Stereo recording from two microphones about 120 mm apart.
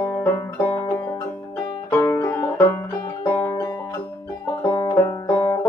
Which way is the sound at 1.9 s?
20° left (ahead or behind).